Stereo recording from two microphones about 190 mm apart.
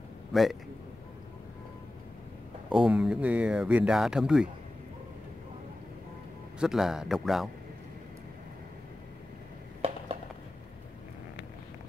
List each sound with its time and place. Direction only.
0.3 s a man's voice: centre (ahead or behind)
2.9 s speech: 5° right (ahead or behind)
6.6 s speech: centre (ahead or behind)
9.8 s a sound: 30° right (ahead or behind)